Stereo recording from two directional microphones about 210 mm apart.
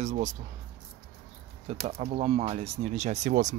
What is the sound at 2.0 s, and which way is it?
Speech, 30° right (ahead or behind).